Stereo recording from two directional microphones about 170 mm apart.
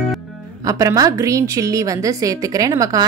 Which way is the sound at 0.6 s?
20° right (ahead or behind).